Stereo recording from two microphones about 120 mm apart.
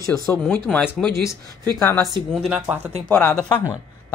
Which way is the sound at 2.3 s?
5° right (ahead or behind).